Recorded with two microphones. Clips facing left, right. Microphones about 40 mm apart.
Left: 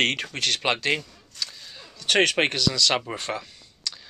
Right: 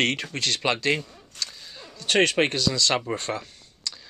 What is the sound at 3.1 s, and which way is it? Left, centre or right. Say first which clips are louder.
Speech: right 3 dB; left.